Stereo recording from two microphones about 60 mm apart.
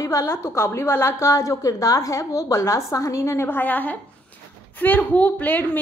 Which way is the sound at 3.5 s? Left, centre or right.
Left.